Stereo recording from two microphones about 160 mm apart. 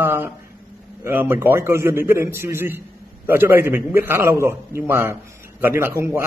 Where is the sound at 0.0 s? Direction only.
15° right (ahead or behind).